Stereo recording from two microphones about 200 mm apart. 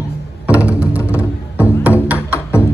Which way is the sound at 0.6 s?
5° right (ahead or behind).